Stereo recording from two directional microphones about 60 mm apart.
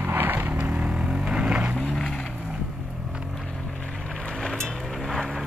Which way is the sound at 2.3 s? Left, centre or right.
Centre.